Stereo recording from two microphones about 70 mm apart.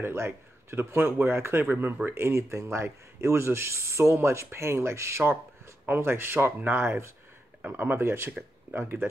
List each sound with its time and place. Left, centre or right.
0.0 s speech: right